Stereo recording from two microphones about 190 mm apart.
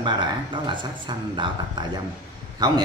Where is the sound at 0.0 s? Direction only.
25° right (ahead or behind).